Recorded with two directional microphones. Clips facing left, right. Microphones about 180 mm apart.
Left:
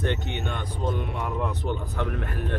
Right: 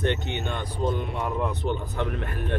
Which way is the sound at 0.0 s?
25° right (ahead or behind).